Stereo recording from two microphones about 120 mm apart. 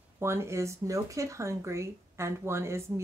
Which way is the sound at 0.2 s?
20° right (ahead or behind).